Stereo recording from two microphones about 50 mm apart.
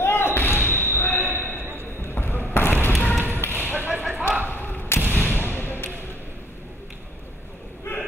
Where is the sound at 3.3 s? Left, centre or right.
Left.